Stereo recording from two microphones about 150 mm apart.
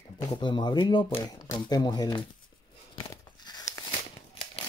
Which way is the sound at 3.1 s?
25° left (ahead or behind).